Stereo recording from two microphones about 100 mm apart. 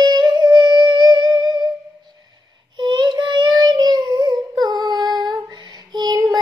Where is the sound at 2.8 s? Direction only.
50° right (ahead or behind).